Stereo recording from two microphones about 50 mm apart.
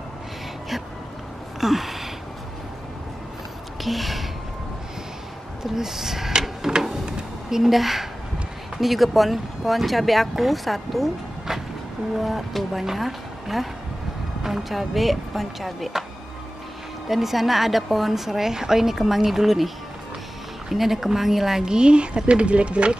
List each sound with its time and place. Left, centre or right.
1.6 s a sound: centre
3.8 s gasp: centre
5.6 s drawer open or close: centre
8.7 s speech: centre
17.1 s a woman's voice: centre; by 22.9 s right